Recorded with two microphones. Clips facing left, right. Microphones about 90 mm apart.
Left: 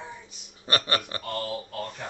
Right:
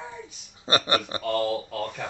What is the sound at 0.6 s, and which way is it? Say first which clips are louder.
Speech: right 3 dB; 20° right (ahead or behind).